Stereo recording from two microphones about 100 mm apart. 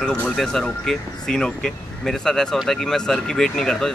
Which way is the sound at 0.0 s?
5° left (ahead or behind).